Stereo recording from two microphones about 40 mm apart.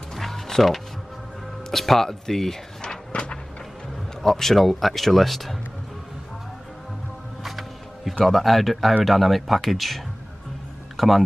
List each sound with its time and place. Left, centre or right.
0.1 s music: centre
1.7 s speech: centre
3.1 s a sound: left
4.2 s speech: centre
7.4 s music: centre
8.3 s speech: centre